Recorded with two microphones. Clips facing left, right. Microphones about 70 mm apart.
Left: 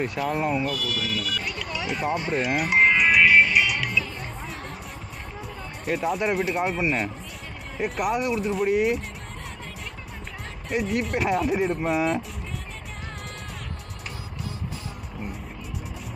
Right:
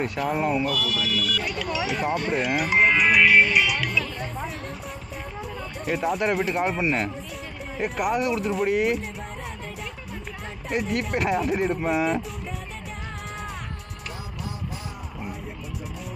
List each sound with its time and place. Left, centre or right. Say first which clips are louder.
0.0 s speech: right 1 dB; centre
0.7 s speech: right 3 dB; right
1.2 s speech: right 3 dB; centre
1.6 s music: right 2 dB; centre
5.4 s speech: right 2 dB; centre
10.7 s speech: even; centre